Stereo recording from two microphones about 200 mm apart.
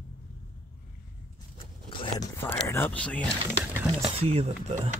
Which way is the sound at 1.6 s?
25° left (ahead or behind).